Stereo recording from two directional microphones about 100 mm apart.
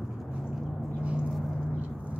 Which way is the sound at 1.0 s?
10° right (ahead or behind).